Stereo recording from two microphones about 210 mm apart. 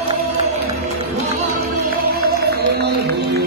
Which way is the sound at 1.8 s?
45° right (ahead or behind).